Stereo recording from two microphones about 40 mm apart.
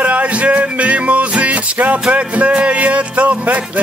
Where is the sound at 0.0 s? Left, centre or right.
Right.